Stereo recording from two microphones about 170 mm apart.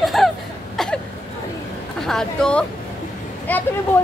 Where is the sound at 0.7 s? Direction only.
5° left (ahead or behind).